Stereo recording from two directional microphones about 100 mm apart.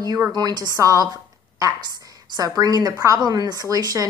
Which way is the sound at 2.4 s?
40° right (ahead or behind).